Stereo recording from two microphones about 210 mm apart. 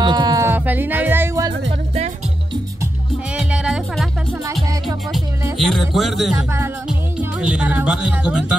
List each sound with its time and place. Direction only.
0.0 s music: 20° right (ahead or behind)
3.3 s music: 5° right (ahead or behind)
5.6 s speech: centre (ahead or behind)
6.3 s speech: 10° right (ahead or behind)